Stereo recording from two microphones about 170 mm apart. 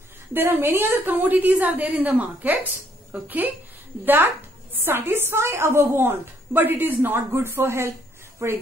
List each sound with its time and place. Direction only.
0.3 s a woman's voice: 10° right (ahead or behind)